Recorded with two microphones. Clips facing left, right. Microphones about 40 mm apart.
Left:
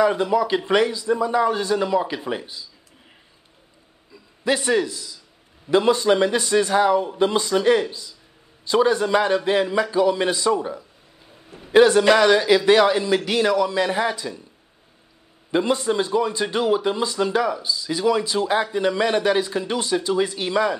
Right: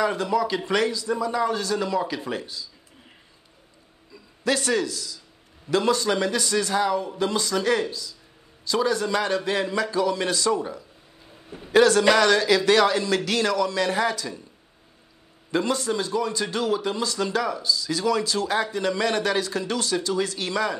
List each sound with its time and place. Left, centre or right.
0.0 s speech: centre
4.1 s a man's voice: centre
11.2 s a sound: centre
11.7 s speech: centre
15.5 s speech: centre